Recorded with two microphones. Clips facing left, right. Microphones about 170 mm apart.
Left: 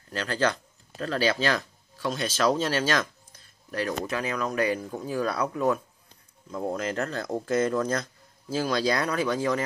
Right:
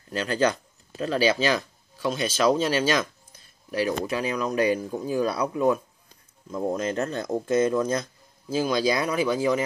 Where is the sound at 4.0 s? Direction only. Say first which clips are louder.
Right 2 dB; 20° right (ahead or behind).